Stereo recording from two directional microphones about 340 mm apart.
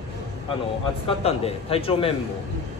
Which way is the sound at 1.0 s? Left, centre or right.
Centre.